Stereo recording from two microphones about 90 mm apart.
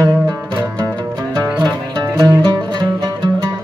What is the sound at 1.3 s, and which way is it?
Music, 45° right (ahead or behind).